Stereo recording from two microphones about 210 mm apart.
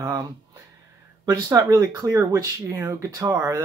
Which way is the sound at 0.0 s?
15° right (ahead or behind).